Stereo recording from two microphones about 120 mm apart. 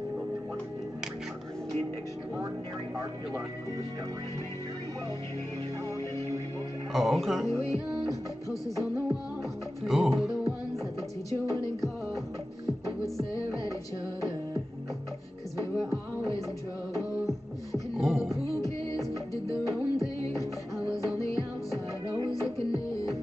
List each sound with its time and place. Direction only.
6.9 s speech: centre (ahead or behind)
9.4 s music: centre (ahead or behind)
13.0 s music: 30° left (ahead or behind)
17.9 s music: centre (ahead or behind)
20.9 s music: 30° left (ahead or behind)